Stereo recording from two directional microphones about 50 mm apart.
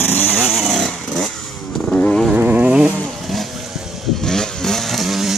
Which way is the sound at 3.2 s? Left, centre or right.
Centre.